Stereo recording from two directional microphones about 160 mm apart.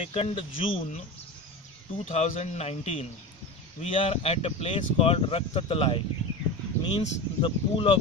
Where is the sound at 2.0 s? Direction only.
45° left (ahead or behind).